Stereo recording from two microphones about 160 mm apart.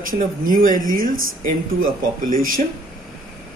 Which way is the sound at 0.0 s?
60° right (ahead or behind).